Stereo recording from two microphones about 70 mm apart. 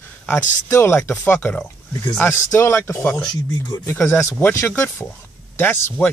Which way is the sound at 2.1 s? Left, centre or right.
Left.